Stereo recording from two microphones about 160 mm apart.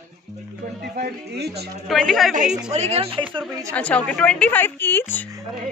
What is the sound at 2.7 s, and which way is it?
Speech, 40° right (ahead or behind).